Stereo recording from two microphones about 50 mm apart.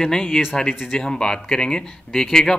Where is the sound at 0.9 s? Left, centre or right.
Centre.